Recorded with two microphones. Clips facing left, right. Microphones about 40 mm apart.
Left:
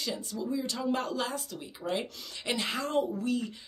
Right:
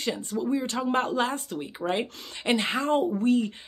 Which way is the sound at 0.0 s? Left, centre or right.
Right.